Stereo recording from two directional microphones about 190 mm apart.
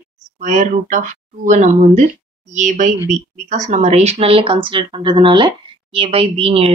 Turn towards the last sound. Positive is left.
turn(degrees=-30)  # may be behind; listen again after turning